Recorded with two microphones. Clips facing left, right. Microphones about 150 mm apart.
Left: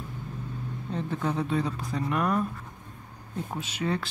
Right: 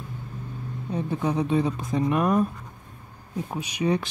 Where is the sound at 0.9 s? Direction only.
15° right (ahead or behind).